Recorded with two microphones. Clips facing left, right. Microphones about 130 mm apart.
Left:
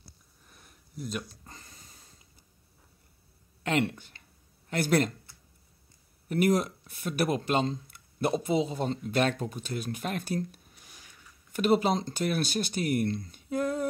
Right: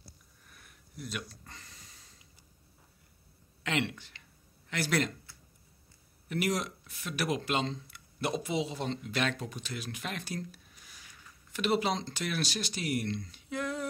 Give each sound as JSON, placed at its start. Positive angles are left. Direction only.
{"t": 0.5, "sound": "a sound", "side_deg": 35}
{"t": 3.6, "sound": "speech", "side_deg": 45}
{"t": 6.2, "sound": "speech", "side_deg": 45}